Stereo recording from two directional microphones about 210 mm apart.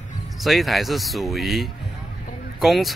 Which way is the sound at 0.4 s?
Centre (ahead or behind).